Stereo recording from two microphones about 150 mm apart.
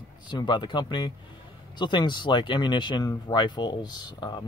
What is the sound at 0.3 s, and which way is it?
Speech, 30° left (ahead or behind).